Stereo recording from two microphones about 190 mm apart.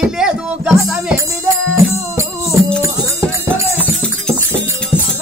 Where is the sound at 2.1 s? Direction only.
15° right (ahead or behind).